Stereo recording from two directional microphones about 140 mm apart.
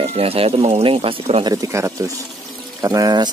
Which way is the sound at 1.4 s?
25° right (ahead or behind).